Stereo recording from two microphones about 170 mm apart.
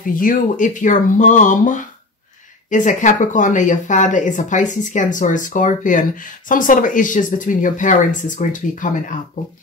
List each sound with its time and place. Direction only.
0.0 s speech: 55° left (ahead or behind)